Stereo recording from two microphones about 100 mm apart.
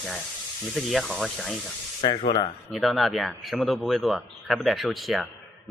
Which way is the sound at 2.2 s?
50° left (ahead or behind).